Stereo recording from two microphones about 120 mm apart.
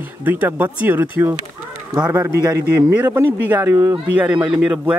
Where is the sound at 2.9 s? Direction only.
15° right (ahead or behind).